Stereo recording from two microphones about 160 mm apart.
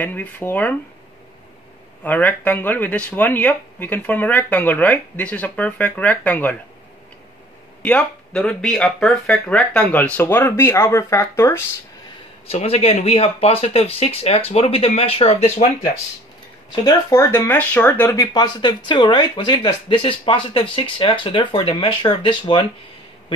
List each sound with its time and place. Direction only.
0.0 s speech: 10° left (ahead or behind)
2.0 s speech: 10° left (ahead or behind)
7.8 s speech: 5° left (ahead or behind)
12.4 s speech: 40° left (ahead or behind)
16.8 s speech: 20° left (ahead or behind)